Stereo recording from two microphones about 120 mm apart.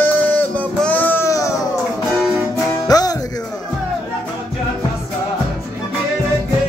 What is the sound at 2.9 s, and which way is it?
Music, 30° left (ahead or behind).